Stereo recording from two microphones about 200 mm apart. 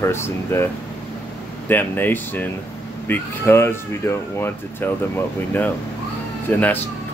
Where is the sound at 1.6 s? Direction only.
10° left (ahead or behind).